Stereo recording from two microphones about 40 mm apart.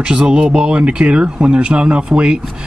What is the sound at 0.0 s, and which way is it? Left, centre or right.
Speech, right.